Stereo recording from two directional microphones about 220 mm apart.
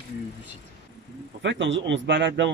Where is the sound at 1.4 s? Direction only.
55° right (ahead or behind).